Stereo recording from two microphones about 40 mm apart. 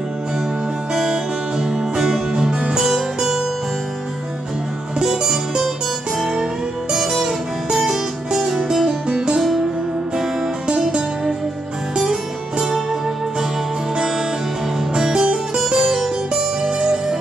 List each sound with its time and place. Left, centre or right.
1.6 s music: centre
2.4 s music: centre
4.9 s music: centre
7.9 s music: centre
10.7 s music: right
13.9 s music: centre